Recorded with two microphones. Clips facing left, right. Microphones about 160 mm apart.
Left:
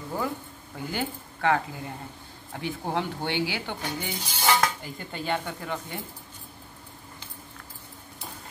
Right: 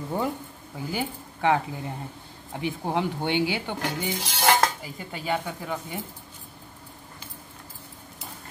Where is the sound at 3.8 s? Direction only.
90° right.